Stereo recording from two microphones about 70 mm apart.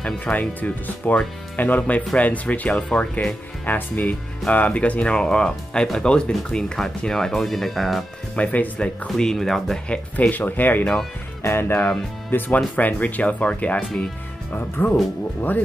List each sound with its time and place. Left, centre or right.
0.0 s speech: left; by 8.0 s centre
8.4 s speech: centre
9.1 s speech: centre
9.8 s speech: left